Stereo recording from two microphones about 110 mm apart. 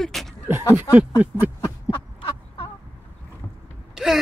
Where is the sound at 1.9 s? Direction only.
50° left (ahead or behind).